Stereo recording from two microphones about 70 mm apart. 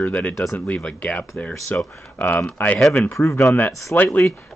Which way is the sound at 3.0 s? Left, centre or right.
Left.